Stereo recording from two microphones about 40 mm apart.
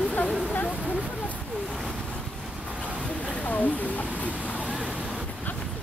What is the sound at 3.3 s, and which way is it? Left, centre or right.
Speech, left.